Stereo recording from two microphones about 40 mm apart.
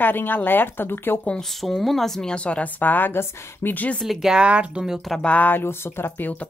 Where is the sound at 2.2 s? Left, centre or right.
Left.